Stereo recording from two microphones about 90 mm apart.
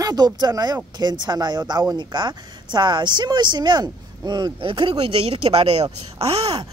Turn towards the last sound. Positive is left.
turn(degrees=-90)